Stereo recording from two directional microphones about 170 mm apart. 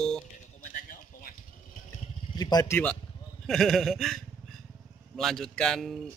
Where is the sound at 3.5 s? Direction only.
Centre (ahead or behind).